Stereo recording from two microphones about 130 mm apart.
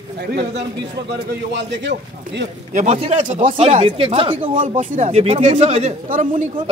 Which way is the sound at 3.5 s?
50° right (ahead or behind).